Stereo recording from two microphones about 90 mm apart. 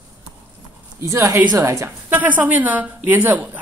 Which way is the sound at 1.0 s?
30° right (ahead or behind).